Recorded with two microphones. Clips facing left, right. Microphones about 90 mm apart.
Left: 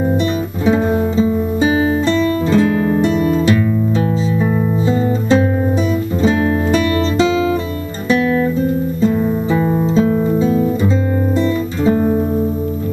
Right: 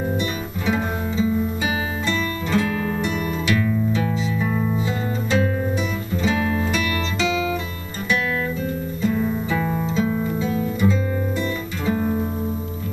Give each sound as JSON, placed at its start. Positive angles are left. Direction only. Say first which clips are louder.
{"t": 0.7, "sound": "music", "louder": "left 9 dB", "side_deg": 35}
{"t": 3.9, "sound": "music", "louder": "left 6 dB", "side_deg": 35}
{"t": 4.5, "sound": "music", "louder": "left 7 dB", "side_deg": 25}